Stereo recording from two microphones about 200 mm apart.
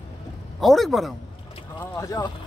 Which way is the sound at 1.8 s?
15° left (ahead or behind).